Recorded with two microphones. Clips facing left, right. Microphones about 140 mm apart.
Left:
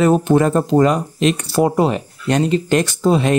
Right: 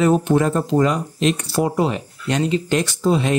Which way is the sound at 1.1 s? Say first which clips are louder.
Left 3 dB; 65° left (ahead or behind).